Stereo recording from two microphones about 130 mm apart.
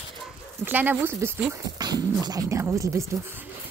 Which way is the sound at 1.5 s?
30° right (ahead or behind).